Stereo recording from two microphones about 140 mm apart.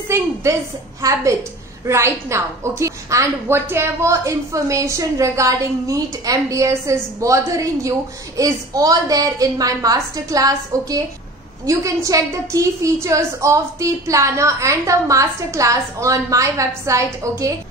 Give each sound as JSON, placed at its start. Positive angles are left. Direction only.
{"t": 0.1, "sound": "a woman's voice", "side_deg": -20}